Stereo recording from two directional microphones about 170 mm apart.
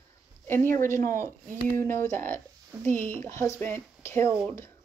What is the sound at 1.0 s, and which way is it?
Speech, 55° right (ahead or behind).